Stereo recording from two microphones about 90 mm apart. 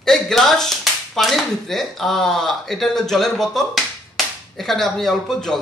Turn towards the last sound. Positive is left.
turn(degrees=5)  # may be behind; listen again after turning